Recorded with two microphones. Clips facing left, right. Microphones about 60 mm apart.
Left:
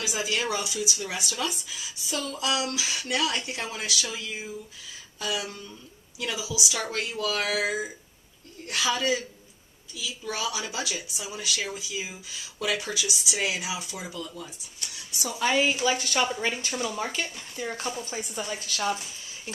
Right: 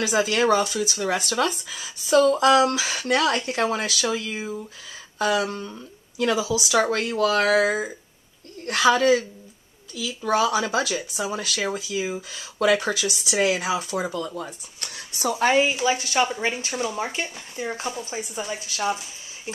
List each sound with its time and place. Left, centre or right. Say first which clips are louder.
0.0 s speech: right 8 dB; right
2.5 s speech: right 10 dB; right
5.2 s a sound: right 9 dB; right
6.9 s speech: right 8 dB; right
8.6 s speech: right 8 dB; right
10.2 s speech: right 11 dB; right
15.5 s a woman's voice: right 4 dB; centre